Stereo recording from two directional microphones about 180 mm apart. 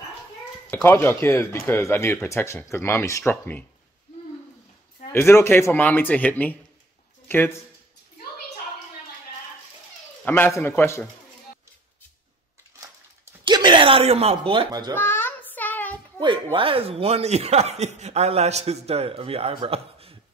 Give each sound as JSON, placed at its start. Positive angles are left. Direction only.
{"t": 0.7, "sound": "speech", "side_deg": 10}
{"t": 5.1, "sound": "speech", "side_deg": 15}
{"t": 10.2, "sound": "speech", "side_deg": 10}
{"t": 13.4, "sound": "speech", "side_deg": -25}
{"t": 15.0, "sound": "child singing", "side_deg": 10}
{"t": 16.5, "sound": "speech", "side_deg": -30}